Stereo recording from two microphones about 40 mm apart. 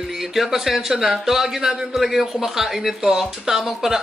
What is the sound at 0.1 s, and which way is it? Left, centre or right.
A man's voice, centre.